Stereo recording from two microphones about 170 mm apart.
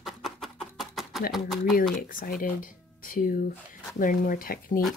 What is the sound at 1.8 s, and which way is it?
Speech, 55° left (ahead or behind).